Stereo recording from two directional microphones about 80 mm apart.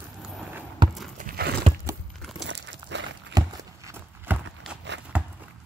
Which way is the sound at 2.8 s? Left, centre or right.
Right.